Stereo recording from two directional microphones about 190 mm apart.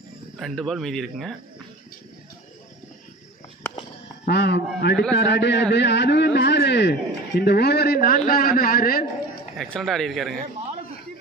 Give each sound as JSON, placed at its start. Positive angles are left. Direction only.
{"t": 0.4, "sound": "speech", "side_deg": 0}
{"t": 4.3, "sound": "a man's voice", "side_deg": 60}
{"t": 9.6, "sound": "speech", "side_deg": 0}